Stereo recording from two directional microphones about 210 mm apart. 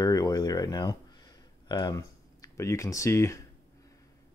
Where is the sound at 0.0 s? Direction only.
20° left (ahead or behind).